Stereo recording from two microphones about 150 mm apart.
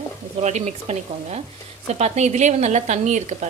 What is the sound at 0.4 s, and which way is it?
Speech, 50° right (ahead or behind).